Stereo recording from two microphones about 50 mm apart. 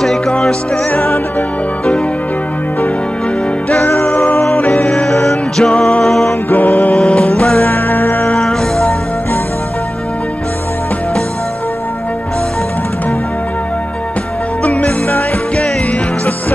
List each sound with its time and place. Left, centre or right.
0.0 s music: centre
4.1 s music: left
4.8 s music: centre
6.5 s music: left
7.0 s music: centre
7.6 s music: left
8.3 s music: centre
14.6 s music: left